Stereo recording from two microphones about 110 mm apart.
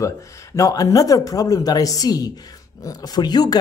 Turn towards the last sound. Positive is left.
turn(degrees=40)  # may be behind; listen again after turning